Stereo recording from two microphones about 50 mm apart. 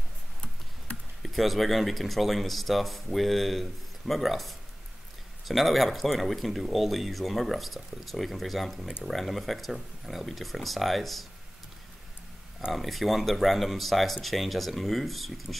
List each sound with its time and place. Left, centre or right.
0.9 s a sound: left
1.2 s speech: centre
12.7 s speech: centre